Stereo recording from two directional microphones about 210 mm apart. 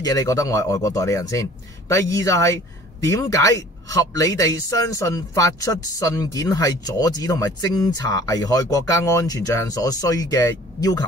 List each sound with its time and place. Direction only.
0.0 s speech: 15° left (ahead or behind)